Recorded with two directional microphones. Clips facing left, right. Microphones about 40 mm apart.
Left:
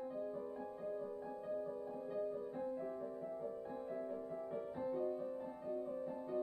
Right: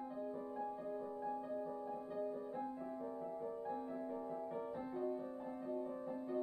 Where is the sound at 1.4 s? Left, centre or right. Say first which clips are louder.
Left 1 dB; centre.